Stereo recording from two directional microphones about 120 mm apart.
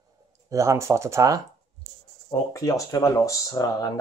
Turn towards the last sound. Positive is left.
turn(degrees=30)  # may be behind; listen again after turning